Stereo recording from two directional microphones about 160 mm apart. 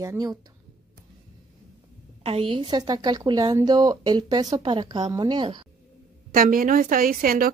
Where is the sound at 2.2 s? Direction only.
35° right (ahead or behind).